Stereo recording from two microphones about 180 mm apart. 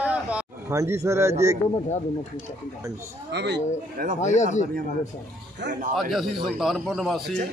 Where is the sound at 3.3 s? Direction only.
70° right (ahead or behind).